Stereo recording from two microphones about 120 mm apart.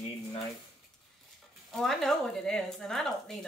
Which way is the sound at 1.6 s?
Centre (ahead or behind).